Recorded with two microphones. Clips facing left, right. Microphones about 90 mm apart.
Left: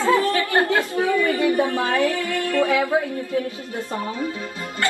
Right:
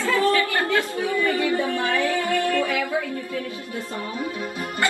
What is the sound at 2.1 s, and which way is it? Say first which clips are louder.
Music: right 1 dB; 25° right (ahead or behind).